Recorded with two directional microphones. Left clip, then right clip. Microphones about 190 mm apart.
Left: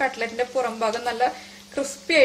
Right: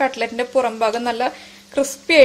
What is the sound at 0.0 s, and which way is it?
A woman's voice, 45° right (ahead or behind).